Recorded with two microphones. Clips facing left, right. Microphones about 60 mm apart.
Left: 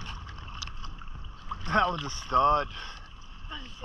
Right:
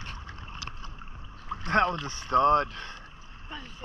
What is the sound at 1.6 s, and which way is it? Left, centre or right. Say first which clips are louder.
Speech: right 1 dB; right.